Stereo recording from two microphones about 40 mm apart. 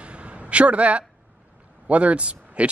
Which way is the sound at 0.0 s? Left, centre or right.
Right.